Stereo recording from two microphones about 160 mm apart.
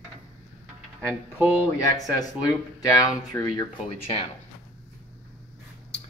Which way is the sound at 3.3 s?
20° left (ahead or behind).